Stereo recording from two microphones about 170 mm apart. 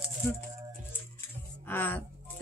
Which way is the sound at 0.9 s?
10° left (ahead or behind).